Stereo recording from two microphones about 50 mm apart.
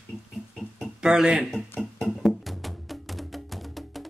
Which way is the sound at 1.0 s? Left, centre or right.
Centre.